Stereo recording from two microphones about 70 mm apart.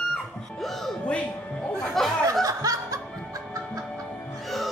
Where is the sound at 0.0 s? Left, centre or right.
Centre.